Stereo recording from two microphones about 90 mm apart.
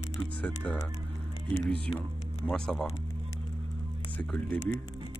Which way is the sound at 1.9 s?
20° left (ahead or behind).